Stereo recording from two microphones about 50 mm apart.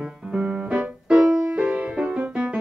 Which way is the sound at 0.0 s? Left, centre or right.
Right.